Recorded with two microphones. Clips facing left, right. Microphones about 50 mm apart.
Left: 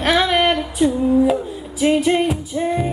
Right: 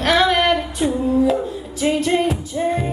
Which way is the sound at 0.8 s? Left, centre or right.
Right.